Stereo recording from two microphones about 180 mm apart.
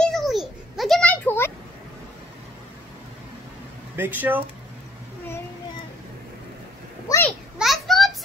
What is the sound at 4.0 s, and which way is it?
Speech, 10° right (ahead or behind).